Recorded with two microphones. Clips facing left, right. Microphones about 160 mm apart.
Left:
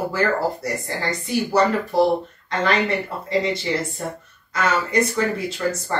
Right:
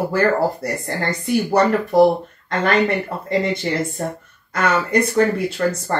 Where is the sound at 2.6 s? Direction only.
55° right (ahead or behind).